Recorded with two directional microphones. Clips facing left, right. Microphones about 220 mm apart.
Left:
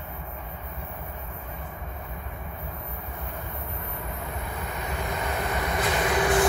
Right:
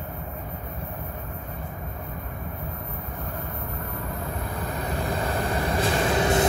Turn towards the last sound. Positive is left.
turn(degrees=-30)  # may be behind; listen again after turning